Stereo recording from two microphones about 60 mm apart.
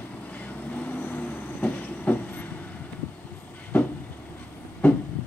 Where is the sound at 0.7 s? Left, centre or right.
Left.